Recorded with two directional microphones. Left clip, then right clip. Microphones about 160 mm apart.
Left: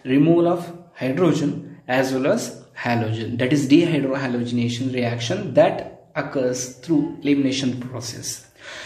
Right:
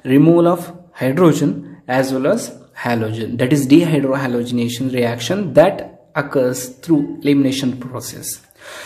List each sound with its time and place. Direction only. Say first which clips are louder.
0.0 s speech: right 5 dB; 55° right (ahead or behind)
1.9 s speech: right 3 dB; 40° right (ahead or behind)